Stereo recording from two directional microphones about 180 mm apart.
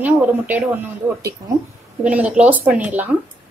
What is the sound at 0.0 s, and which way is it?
Speech, 10° right (ahead or behind).